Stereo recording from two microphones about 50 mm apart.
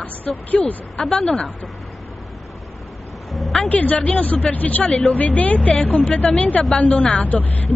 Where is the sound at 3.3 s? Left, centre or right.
Centre.